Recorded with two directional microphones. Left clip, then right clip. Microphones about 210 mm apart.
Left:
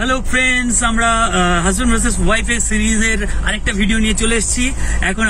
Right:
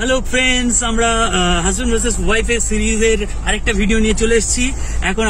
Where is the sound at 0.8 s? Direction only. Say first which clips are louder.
Left 2 dB; 10° left (ahead or behind).